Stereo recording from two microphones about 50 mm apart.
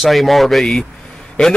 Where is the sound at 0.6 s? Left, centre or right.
Centre.